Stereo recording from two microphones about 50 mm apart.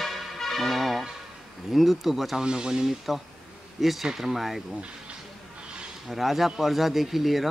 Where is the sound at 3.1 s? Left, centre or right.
Centre.